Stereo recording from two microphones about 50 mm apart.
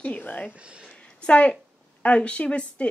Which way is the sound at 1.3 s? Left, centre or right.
Left.